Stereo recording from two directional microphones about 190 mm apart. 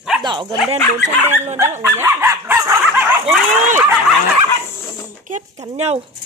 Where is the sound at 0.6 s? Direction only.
35° right (ahead or behind).